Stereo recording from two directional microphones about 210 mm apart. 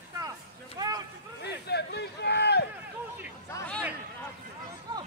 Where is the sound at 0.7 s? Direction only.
20° right (ahead or behind).